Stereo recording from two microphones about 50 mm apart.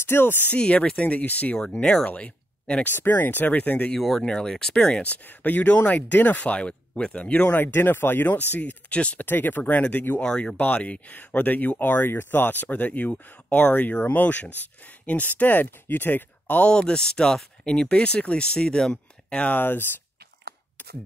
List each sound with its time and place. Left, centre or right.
0.0 s speech: left
0.5 s speech: left
2.8 s speech: left
4.2 s speech: centre
5.1 s speech: left
8.5 s speech: left
9.2 s speech: left
16.7 s speech: centre; by 19.9 s left